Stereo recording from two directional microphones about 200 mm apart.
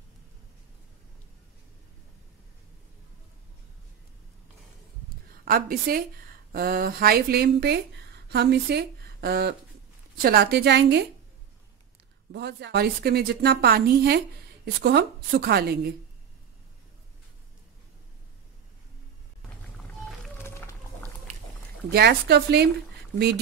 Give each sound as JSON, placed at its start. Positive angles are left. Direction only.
{"t": 5.4, "sound": "a woman's voice", "side_deg": -50}
{"t": 12.3, "sound": "a woman's voice", "side_deg": -60}
{"t": 20.4, "sound": "run", "side_deg": 10}
{"t": 21.9, "sound": "a woman's voice", "side_deg": -55}